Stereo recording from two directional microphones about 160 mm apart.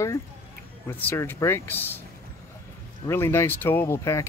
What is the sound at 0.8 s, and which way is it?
Speech, 15° left (ahead or behind).